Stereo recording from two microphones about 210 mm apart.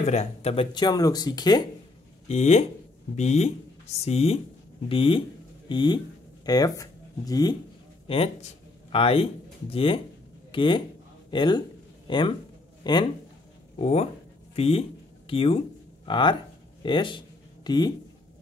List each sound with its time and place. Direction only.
0.0 s speech: 30° left (ahead or behind)
2.2 s speech: 30° left (ahead or behind)
13.7 s speech: 30° left (ahead or behind)